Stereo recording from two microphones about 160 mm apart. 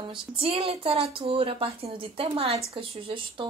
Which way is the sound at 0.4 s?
35° right (ahead or behind).